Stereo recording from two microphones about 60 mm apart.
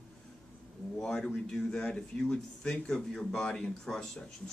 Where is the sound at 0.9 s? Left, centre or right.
Centre.